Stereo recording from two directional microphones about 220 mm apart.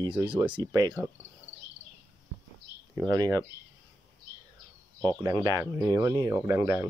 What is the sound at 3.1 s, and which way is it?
Speech, 15° right (ahead or behind).